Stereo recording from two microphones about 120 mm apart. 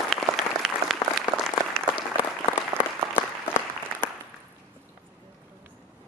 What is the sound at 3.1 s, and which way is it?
Applause, 20° left (ahead or behind).